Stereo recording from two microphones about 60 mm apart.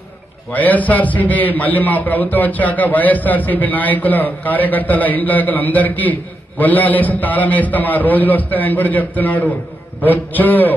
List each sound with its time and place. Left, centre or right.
0.5 s a man's voice: left